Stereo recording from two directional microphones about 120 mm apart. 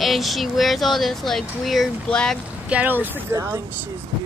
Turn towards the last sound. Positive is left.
turn(degrees=-20)  # may be behind; listen again after turning